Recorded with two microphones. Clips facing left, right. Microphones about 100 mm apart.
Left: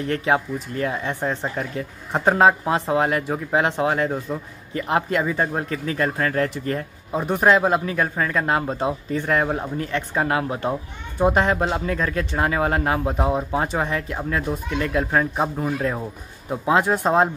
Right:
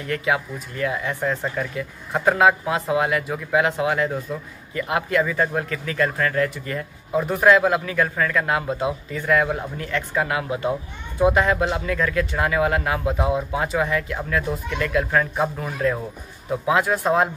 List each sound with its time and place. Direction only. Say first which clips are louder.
0.1 s speech: left 1 dB; 35° left (ahead or behind)
7.2 s speech: right 1 dB; 25° left (ahead or behind)